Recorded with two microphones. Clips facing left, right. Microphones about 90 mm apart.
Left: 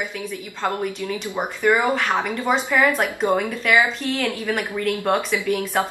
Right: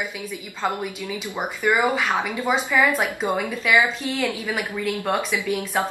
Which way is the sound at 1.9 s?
5° right (ahead or behind).